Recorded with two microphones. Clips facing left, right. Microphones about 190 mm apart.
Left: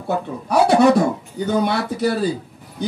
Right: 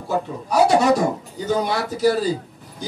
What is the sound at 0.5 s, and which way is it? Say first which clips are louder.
A man's voice: left 2 dB; 60° left (ahead or behind).